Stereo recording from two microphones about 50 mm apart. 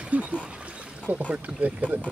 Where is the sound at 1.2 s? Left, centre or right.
Right.